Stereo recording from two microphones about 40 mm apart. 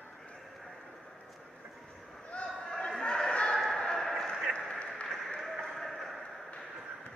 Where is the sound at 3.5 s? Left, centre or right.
Centre.